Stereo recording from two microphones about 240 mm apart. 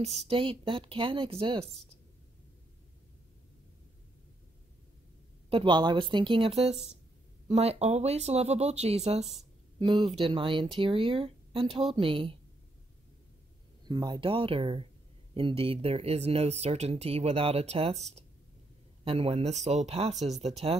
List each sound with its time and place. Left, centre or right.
0.3 s speech: right
5.5 s speech: right
9.2 s speech: centre
9.8 s speech: centre
13.8 s speech: centre
19.0 s speech: right